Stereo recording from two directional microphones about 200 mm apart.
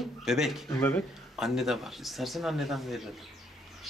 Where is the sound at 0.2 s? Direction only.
Centre (ahead or behind).